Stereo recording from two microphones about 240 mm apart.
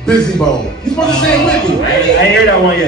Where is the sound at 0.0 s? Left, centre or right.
Centre.